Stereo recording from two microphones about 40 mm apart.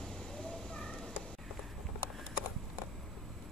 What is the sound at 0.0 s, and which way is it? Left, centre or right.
Cat, centre.